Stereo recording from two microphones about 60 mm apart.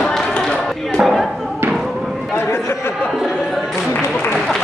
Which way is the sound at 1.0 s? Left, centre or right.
Centre.